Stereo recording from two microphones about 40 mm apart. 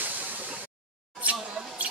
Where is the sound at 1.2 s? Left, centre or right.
Right.